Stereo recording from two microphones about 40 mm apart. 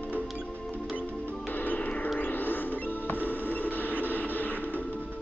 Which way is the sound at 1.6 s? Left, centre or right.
Left.